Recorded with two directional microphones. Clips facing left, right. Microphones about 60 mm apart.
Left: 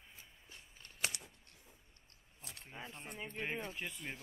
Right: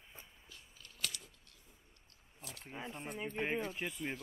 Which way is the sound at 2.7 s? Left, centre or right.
Centre.